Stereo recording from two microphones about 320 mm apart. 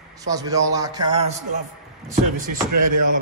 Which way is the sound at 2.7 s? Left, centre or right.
Right.